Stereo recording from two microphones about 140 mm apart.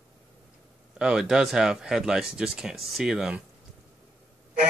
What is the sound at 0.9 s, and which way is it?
Speech, 5° right (ahead or behind).